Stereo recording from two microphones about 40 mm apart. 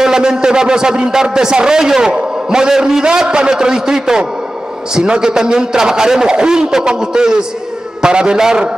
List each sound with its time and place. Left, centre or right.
0.0 s a man's voice: centre